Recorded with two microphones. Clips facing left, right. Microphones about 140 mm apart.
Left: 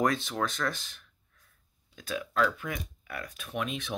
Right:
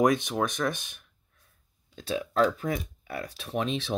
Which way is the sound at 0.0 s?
15° right (ahead or behind).